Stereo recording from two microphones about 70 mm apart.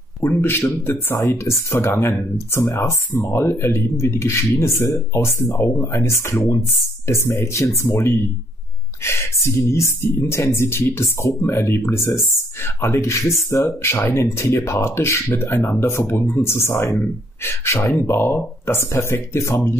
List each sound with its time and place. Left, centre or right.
0.2 s speech: left